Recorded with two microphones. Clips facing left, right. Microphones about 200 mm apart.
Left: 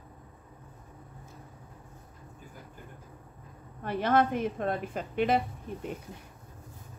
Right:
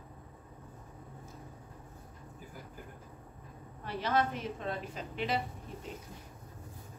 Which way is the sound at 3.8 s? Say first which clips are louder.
Left 6 dB; 55° left (ahead or behind).